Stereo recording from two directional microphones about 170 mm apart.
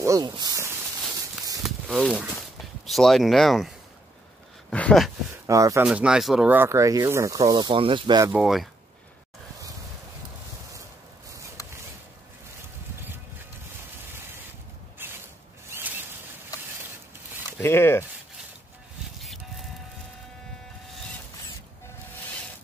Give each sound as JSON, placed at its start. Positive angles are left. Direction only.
{"t": 0.0, "sound": "speech", "side_deg": -20}
{"t": 1.6, "sound": "speech", "side_deg": 0}
{"t": 5.3, "sound": "speech", "side_deg": -20}
{"t": 5.9, "sound": "speech", "side_deg": -5}
{"t": 8.3, "sound": "speech", "side_deg": 0}
{"t": 15.0, "sound": "a sound", "side_deg": -10}
{"t": 15.7, "sound": "zipper", "side_deg": -10}
{"t": 17.6, "sound": "speech", "side_deg": 15}
{"t": 19.1, "sound": "a sound", "side_deg": 0}